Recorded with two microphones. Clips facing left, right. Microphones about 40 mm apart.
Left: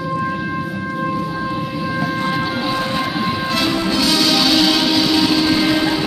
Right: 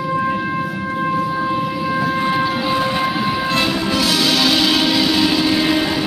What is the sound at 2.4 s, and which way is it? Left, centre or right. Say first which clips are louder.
Train: right 2 dB; centre.